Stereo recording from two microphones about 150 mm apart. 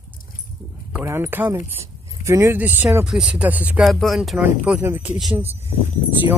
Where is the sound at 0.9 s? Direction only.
15° right (ahead or behind).